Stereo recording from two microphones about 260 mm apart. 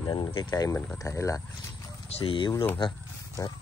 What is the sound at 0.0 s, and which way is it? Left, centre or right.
Speech, centre.